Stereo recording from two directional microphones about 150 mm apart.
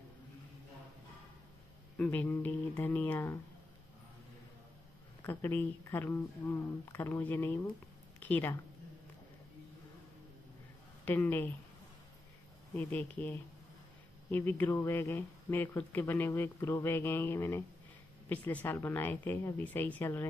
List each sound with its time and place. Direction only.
2.0 s speech: 10° left (ahead or behind)
5.2 s speech: 15° left (ahead or behind)
11.1 s speech: 15° left (ahead or behind)
12.7 s speech: 10° left (ahead or behind)